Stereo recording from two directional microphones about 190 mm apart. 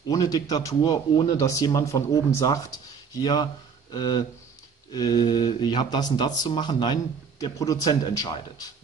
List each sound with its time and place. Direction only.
0.1 s speech: 20° left (ahead or behind)